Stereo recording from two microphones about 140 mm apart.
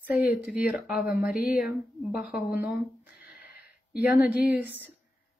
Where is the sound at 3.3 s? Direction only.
90° left.